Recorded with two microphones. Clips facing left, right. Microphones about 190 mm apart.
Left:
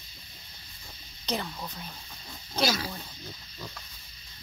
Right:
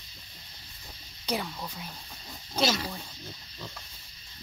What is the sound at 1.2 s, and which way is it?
Speech, 5° right (ahead or behind).